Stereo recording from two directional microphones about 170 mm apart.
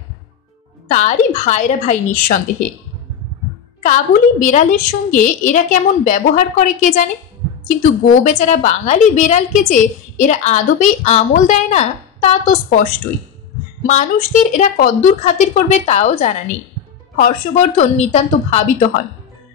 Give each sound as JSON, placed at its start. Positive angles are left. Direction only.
{"t": 0.8, "sound": "a woman's voice", "side_deg": 45}
{"t": 3.8, "sound": "a woman's voice", "side_deg": 50}